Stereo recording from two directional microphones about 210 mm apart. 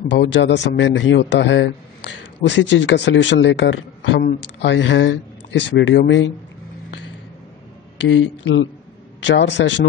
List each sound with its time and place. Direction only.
0.1 s a man's voice: 60° left (ahead or behind)
8.0 s a man's voice: 65° left (ahead or behind)